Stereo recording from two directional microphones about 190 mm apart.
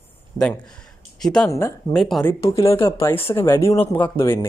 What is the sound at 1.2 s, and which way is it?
Speech, 5° left (ahead or behind).